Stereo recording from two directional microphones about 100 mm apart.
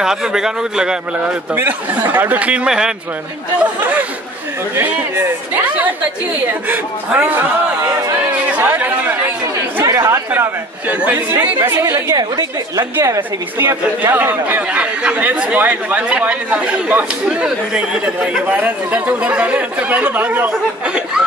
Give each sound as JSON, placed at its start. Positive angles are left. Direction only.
{"t": 0.0, "sound": "speech", "side_deg": -5}
{"t": 8.3, "sound": "chatter", "side_deg": -15}
{"t": 9.8, "sound": "chatter", "side_deg": -30}
{"t": 10.3, "sound": "speech", "side_deg": -15}